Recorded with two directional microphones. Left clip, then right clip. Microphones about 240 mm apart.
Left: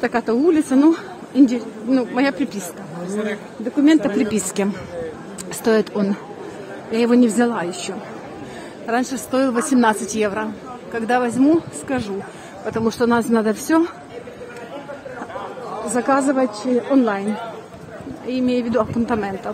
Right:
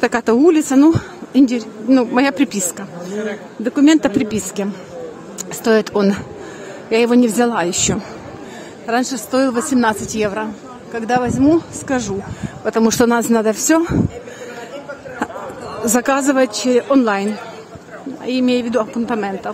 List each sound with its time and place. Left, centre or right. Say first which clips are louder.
0.0 s a woman's voice: right 5 dB; right
3.8 s a woman's voice: right 3 dB; centre
8.8 s a woman's voice: right 3 dB; centre
15.9 s a woman's voice: right 2 dB; right
18.2 s a woman's voice: right 4 dB; centre